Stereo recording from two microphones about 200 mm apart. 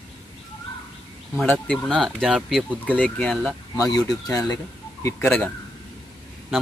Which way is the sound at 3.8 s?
15° left (ahead or behind).